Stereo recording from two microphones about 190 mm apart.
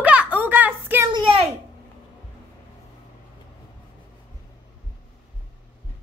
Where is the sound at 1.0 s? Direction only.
25° right (ahead or behind).